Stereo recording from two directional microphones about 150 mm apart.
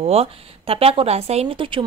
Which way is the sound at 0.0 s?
40° right (ahead or behind).